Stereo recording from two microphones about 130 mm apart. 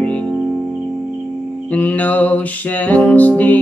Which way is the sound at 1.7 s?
10° left (ahead or behind).